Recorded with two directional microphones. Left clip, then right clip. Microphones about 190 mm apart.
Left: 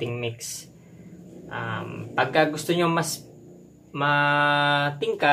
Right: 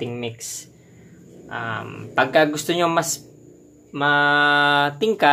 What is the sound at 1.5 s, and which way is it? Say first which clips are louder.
Speech: right 4 dB; 55° right (ahead or behind).